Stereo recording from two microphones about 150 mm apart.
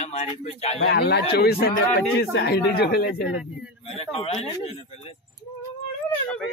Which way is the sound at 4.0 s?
40° left (ahead or behind).